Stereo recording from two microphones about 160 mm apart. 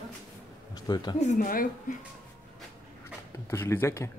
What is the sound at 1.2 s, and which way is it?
Speech, 50° left (ahead or behind).